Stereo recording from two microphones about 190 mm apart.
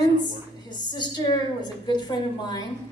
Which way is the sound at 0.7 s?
25° left (ahead or behind).